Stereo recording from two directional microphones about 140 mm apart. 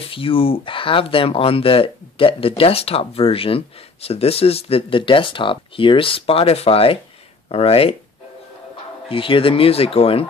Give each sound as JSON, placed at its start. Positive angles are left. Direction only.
{"t": 0.1, "sound": "speech", "side_deg": 40}
{"t": 9.1, "sound": "speech", "side_deg": 40}